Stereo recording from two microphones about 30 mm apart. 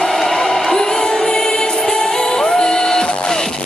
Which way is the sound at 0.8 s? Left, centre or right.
Centre.